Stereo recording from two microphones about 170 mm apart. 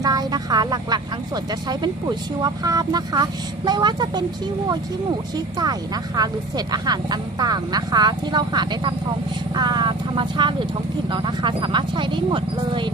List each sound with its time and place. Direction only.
0.0 s speech: 20° right (ahead or behind)